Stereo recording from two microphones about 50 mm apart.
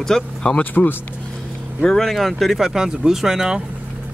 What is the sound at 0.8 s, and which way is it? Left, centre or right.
Speech, left.